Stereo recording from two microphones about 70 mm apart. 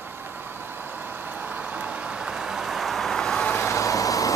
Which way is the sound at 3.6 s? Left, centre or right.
Left.